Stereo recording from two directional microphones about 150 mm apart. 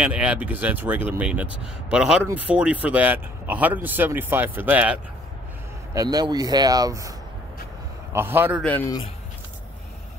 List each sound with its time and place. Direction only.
0.0 s speech: 10° right (ahead or behind)
5.9 s speech: 25° right (ahead or behind)